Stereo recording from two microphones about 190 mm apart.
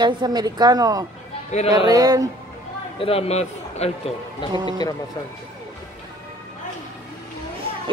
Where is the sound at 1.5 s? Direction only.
40° left (ahead or behind).